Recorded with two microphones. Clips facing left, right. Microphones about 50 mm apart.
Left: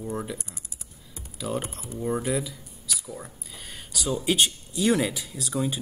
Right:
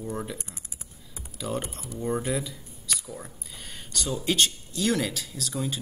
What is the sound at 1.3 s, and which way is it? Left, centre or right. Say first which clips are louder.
Speech: left 1 dB; centre.